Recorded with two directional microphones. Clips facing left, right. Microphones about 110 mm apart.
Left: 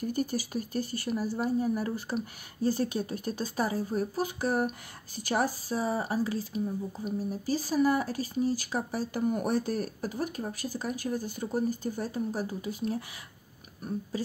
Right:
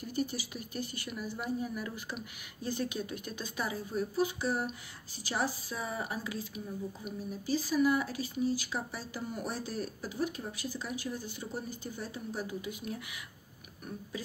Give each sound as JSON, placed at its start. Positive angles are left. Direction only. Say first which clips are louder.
{"t": 0.1, "sound": "speech", "louder": "left 1 dB", "side_deg": 45}
{"t": 5.7, "sound": "speech", "louder": "left 7 dB", "side_deg": 35}